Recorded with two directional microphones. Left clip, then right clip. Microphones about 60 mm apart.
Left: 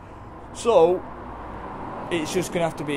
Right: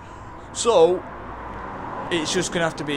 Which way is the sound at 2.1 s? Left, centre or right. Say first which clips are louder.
Right 2 dB; left.